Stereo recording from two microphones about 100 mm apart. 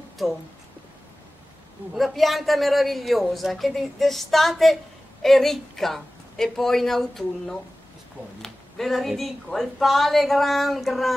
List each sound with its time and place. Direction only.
2.0 s a woman's voice: centre (ahead or behind)